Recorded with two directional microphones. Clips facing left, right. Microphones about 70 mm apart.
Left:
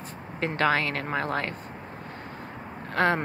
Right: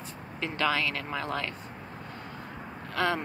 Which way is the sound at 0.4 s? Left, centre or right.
Left.